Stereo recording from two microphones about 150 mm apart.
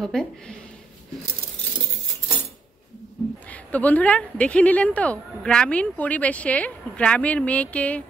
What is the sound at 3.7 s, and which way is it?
A woman's voice, 10° left (ahead or behind).